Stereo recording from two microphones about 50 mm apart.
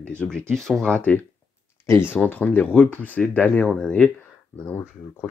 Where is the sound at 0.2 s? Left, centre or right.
Centre.